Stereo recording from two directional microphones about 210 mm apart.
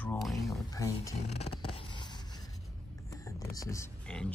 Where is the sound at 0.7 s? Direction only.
15° left (ahead or behind).